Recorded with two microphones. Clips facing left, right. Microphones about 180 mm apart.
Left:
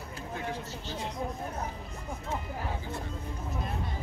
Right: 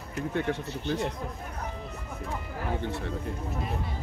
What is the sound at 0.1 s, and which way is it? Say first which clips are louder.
Speech: right 8 dB; 70° right (ahead or behind).